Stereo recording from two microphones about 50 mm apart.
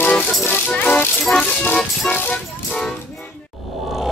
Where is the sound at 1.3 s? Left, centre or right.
Left.